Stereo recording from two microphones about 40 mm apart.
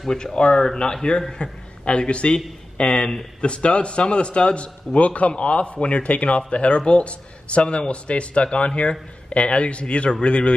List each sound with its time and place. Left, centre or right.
0.2 s a man's voice: left